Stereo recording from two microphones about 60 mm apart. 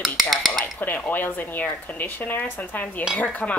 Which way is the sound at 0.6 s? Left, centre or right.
Left.